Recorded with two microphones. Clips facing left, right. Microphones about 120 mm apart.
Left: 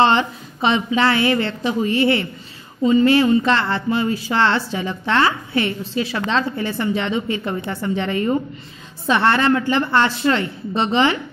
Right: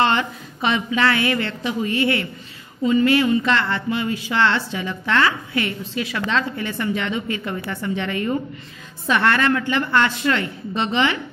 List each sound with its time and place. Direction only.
0.0 s a woman's voice: 30° left (ahead or behind)